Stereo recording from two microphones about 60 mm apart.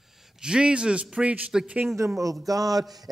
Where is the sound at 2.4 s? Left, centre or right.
Right.